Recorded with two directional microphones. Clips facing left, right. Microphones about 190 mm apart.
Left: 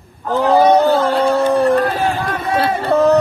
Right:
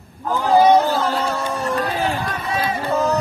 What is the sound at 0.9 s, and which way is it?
Run, 55° left (ahead or behind).